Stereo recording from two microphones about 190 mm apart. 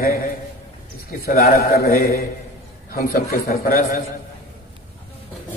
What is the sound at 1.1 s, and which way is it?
A man's voice, 50° left (ahead or behind).